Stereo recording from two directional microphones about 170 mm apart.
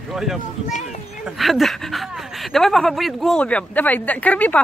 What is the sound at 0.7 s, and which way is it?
Speech, 45° left (ahead or behind).